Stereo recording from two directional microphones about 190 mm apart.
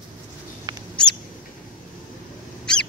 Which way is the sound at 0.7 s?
20° right (ahead or behind).